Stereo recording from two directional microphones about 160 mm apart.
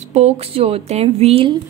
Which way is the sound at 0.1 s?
40° right (ahead or behind).